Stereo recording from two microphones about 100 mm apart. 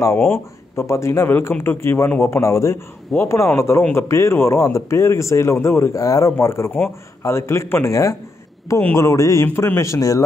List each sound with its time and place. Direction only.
0.0 s speech: 25° left (ahead or behind)